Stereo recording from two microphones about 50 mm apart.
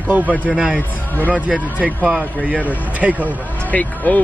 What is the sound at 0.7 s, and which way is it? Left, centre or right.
Speech, left.